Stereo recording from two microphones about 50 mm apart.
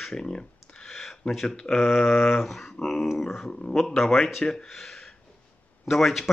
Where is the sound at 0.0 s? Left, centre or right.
Centre.